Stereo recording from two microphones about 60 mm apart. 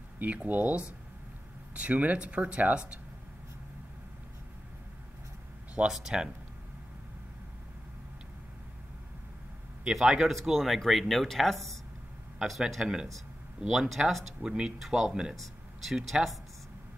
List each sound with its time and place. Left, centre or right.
0.2 s speech: right
5.9 s a man's voice: centre
9.8 s a man's voice: centre
14.4 s a man's voice: centre